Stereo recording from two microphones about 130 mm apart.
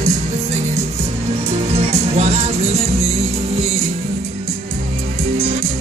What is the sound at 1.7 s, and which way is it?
Music, 55° right (ahead or behind).